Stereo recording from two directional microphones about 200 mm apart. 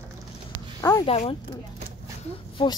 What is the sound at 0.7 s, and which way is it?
Speech, 15° left (ahead or behind).